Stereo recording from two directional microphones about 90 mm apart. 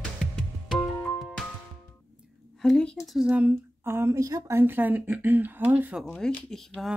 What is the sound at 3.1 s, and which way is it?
Speech, 10° right (ahead or behind).